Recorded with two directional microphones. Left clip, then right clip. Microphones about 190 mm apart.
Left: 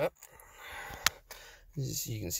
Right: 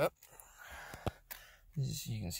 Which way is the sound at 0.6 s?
15° left (ahead or behind).